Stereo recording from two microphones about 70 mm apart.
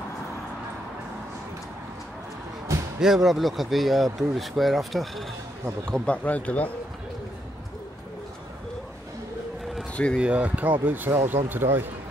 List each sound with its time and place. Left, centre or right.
3.0 s speech: centre
5.9 s speech: centre
10.1 s speech: centre